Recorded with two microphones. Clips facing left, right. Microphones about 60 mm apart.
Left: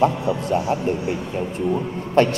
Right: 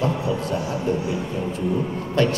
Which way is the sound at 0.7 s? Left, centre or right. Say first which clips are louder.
Left 2 dB; left.